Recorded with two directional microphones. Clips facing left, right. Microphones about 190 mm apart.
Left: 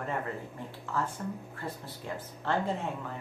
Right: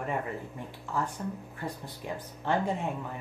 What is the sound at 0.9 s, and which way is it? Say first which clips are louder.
Speech: right 1 dB; 15° right (ahead or behind).